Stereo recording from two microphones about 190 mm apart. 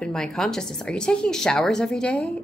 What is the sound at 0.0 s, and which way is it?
A woman's voice, 5° left (ahead or behind).